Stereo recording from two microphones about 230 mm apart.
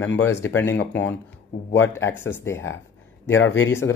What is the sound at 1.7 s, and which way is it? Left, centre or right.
Speech, centre.